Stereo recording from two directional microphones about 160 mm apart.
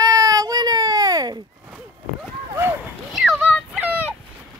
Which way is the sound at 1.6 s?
5° right (ahead or behind).